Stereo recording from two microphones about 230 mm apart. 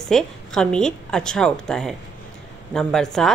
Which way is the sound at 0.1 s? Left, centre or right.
Centre.